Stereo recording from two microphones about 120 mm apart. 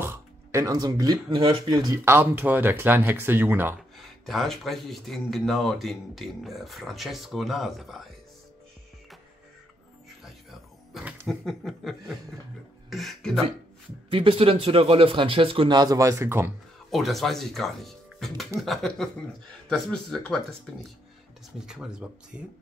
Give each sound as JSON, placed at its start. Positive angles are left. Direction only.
{"t": 0.0, "sound": "music", "side_deg": -20}
{"t": 1.9, "sound": "speech", "side_deg": -20}
{"t": 4.0, "sound": "speech", "side_deg": 0}
{"t": 10.9, "sound": "a sound", "side_deg": 0}
{"t": 11.2, "sound": "speech", "side_deg": 0}
{"t": 12.9, "sound": "beatboxing", "side_deg": 5}
{"t": 14.1, "sound": "speech", "side_deg": -50}
{"t": 16.9, "sound": "speech", "side_deg": 0}
{"t": 21.6, "sound": "speech", "side_deg": -5}